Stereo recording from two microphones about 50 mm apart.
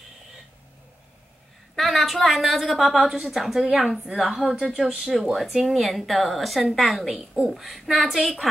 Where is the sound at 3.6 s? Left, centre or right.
Centre.